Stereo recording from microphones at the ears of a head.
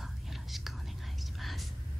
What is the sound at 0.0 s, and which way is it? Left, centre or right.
Whispering, centre.